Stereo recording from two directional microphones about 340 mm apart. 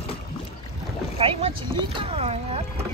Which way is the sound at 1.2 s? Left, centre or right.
Centre.